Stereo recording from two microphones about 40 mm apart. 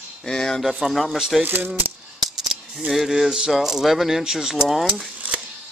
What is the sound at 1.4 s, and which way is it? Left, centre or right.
Speech, right.